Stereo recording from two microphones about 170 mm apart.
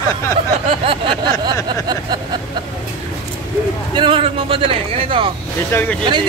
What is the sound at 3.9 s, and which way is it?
Speech, 30° right (ahead or behind).